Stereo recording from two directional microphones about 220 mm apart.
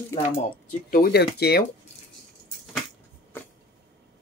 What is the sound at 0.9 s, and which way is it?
Speech, 45° left (ahead or behind).